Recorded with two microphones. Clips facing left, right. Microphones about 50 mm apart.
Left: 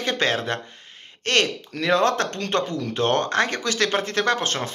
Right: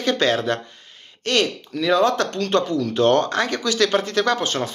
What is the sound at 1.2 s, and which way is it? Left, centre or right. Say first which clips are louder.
Speech: right 1 dB; left.